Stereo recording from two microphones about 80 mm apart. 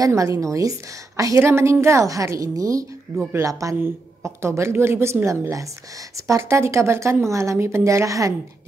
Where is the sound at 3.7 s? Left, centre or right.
Right.